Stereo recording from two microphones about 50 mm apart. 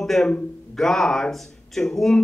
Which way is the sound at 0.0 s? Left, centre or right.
Centre.